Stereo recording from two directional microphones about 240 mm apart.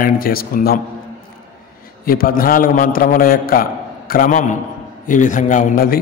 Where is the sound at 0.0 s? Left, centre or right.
Left.